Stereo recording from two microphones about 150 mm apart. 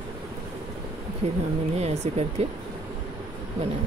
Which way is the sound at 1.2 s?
45° right (ahead or behind).